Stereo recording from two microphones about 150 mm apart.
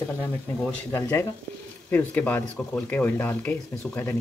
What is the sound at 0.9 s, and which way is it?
Speech, 15° left (ahead or behind).